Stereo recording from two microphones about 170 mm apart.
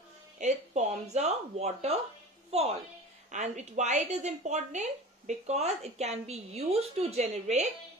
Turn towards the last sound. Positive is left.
turn(degrees=-40)  # may be behind; listen again after turning